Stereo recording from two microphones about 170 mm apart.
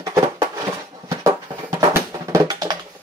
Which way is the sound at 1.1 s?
15° right (ahead or behind).